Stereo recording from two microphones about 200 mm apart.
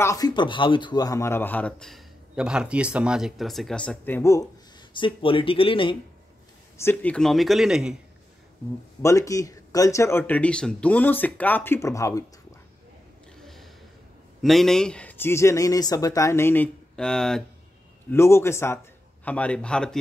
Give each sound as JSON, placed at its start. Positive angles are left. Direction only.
{"t": 0.0, "sound": "speech", "side_deg": 15}
{"t": 4.9, "sound": "speech", "side_deg": 25}
{"t": 6.8, "sound": "speech", "side_deg": 10}
{"t": 9.0, "sound": "speech", "side_deg": 15}
{"t": 13.4, "sound": "gasp", "side_deg": 0}
{"t": 14.4, "sound": "speech", "side_deg": 0}